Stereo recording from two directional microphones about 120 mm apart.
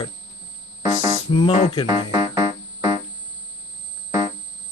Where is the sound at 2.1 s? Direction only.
30° right (ahead or behind).